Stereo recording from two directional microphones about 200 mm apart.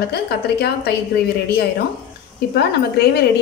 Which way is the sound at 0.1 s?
55° left (ahead or behind).